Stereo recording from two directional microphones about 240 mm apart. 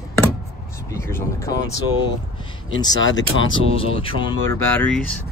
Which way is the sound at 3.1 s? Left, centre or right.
Left.